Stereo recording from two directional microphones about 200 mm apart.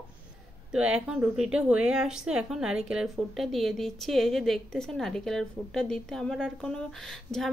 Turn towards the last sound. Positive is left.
turn(degrees=5)  # may be behind; listen again after turning